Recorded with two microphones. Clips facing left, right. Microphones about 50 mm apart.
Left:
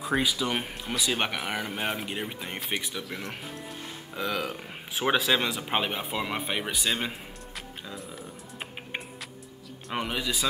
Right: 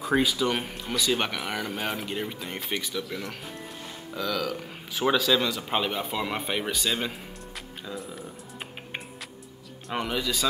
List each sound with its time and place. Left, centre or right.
0.0 s speech: centre
7.1 s music: centre
9.8 s speech: centre